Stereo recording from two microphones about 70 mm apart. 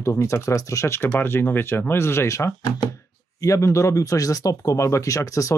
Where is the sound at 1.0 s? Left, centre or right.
Left.